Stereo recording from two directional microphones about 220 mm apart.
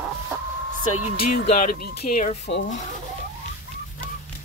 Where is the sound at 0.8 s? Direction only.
80° left.